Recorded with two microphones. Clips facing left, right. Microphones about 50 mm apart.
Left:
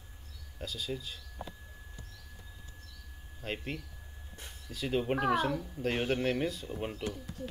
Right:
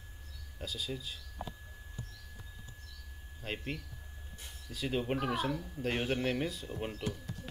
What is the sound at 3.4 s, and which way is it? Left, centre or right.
Speech, centre.